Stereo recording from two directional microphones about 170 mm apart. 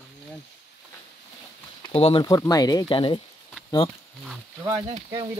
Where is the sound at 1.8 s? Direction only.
35° left (ahead or behind).